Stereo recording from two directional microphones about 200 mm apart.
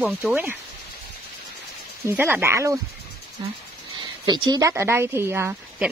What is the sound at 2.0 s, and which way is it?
Speech, 10° right (ahead or behind).